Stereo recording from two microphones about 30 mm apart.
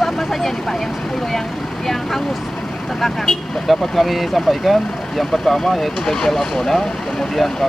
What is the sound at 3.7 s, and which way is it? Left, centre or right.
Speech, centre.